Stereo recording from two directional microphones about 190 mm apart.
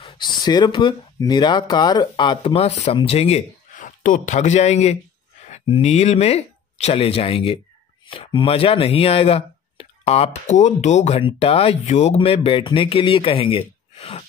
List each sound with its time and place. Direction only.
0.0 s speech: 20° left (ahead or behind)